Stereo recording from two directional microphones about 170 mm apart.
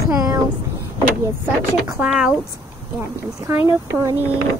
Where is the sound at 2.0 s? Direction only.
5° right (ahead or behind).